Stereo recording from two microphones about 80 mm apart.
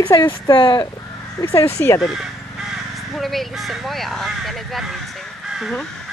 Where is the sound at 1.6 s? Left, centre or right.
Left.